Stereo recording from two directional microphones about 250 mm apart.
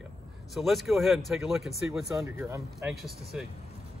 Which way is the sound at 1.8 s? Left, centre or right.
Centre.